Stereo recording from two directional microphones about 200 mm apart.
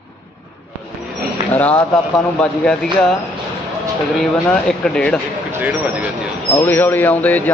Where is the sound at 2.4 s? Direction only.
5° left (ahead or behind).